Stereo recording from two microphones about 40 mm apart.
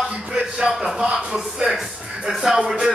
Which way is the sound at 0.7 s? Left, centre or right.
Centre.